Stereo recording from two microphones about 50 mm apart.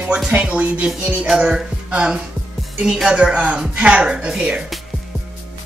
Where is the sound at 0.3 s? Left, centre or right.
Right.